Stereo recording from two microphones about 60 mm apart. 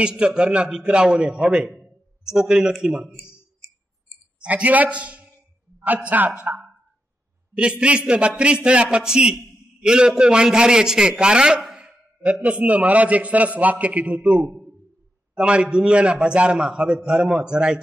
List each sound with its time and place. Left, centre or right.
0.0 s a man's voice: centre
4.4 s a man's voice: right